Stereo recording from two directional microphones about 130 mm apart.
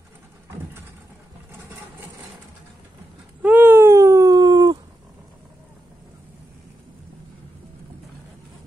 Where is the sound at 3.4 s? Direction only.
15° right (ahead or behind); by 4.7 s 30° right (ahead or behind).